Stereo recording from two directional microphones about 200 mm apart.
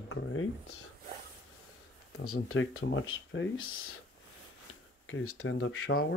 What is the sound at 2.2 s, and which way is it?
Speech, 90° left.